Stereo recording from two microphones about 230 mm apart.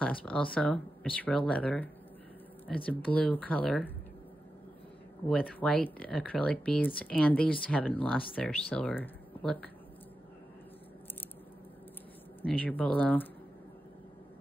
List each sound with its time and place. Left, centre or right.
0.0 s speech: centre
5.3 s speech: centre
12.4 s speech: centre